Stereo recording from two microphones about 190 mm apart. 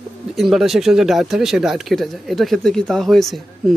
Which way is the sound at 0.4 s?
Centre (ahead or behind).